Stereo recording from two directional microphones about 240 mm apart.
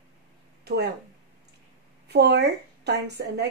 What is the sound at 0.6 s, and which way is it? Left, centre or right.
Speech, right.